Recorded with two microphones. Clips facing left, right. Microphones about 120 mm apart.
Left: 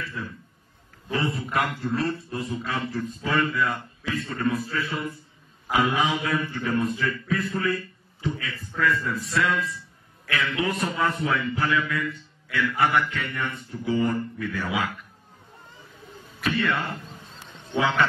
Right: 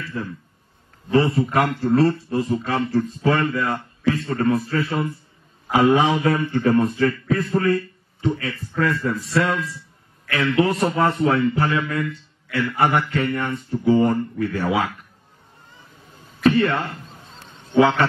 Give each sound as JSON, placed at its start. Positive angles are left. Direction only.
{"t": 0.2, "sound": "a man's voice", "side_deg": -40}
{"t": 16.4, "sound": "a man's voice", "side_deg": -35}